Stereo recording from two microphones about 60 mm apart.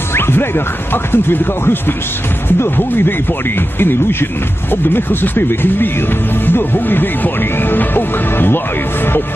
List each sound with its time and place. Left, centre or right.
0.1 s music: left
0.9 s speech: left